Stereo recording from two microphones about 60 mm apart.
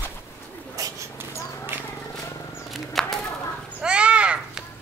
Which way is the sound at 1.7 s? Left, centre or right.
Right.